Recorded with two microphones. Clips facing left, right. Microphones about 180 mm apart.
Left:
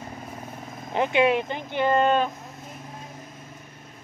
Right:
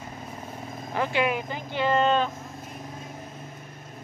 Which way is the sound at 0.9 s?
20° left (ahead or behind).